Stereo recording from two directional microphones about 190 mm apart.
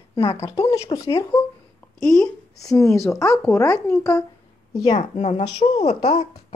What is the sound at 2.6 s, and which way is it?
Speech, 15° left (ahead or behind).